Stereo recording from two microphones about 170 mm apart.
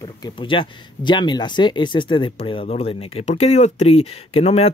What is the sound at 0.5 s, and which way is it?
Speech, 30° left (ahead or behind).